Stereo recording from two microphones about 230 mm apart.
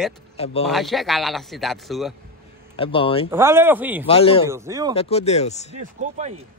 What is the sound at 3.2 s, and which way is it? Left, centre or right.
Speech, centre.